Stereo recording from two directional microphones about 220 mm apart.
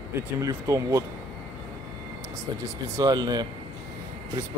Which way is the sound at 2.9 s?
15° right (ahead or behind).